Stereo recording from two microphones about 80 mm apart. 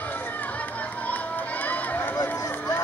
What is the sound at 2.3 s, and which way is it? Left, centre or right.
Run, left.